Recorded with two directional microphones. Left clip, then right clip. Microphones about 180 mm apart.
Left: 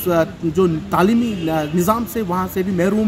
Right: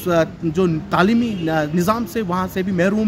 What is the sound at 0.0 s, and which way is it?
A man's voice, 25° right (ahead or behind).